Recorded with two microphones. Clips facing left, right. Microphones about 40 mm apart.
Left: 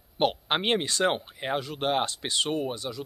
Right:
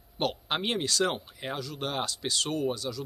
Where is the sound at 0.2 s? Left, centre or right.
Left.